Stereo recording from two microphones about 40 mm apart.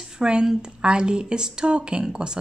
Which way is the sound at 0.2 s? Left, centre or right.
Centre.